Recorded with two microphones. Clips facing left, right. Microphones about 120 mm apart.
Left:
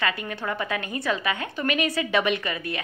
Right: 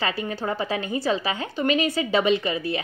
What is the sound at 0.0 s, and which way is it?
A woman's voice, 30° right (ahead or behind).